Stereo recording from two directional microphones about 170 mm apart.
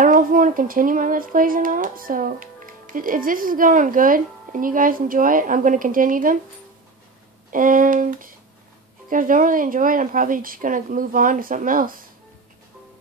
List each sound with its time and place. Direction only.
0.0 s speech: 55° right (ahead or behind)
7.5 s speech: 50° right (ahead or behind)